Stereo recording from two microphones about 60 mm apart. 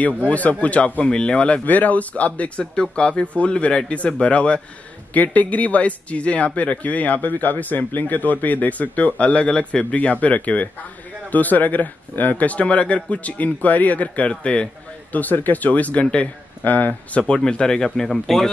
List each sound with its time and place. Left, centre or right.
0.0 s speech: left
15.1 s speech: left
17.2 s speech: centre